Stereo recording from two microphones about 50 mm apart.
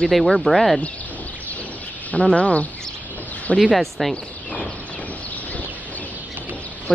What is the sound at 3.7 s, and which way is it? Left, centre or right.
Speech, centre.